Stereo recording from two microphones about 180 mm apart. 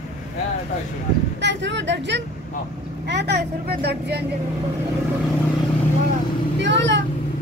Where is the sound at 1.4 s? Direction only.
80° right.